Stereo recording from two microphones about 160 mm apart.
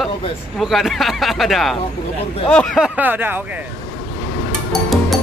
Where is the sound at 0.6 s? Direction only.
Centre (ahead or behind).